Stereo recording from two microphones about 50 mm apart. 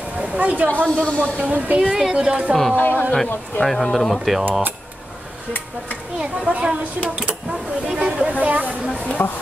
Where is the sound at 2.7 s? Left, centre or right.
Left.